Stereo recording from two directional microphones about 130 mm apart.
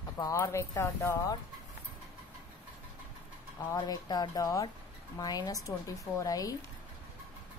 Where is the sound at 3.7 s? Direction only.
30° left (ahead or behind).